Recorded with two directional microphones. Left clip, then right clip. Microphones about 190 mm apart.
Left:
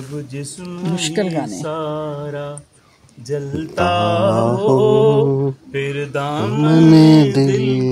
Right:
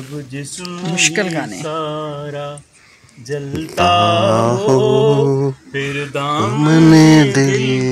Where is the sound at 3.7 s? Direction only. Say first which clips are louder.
Right 4 dB; 30° right (ahead or behind).